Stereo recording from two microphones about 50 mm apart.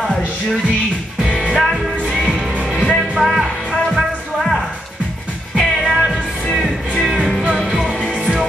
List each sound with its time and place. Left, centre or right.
0.0 s music: centre
1.2 s music: centre
1.6 s music: centre